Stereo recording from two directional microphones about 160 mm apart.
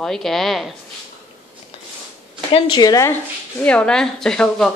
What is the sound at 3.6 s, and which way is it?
A woman's voice, 5° left (ahead or behind).